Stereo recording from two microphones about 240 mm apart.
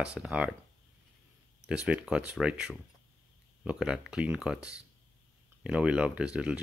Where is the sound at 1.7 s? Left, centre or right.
Centre.